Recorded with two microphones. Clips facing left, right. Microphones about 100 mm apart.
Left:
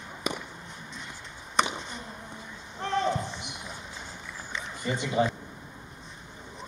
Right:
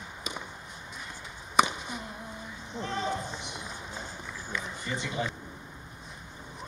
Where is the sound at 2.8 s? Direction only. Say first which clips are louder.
Left 5 dB; 65° left (ahead or behind).